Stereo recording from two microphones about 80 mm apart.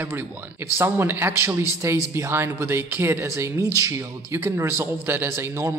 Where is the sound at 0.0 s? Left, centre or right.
Right.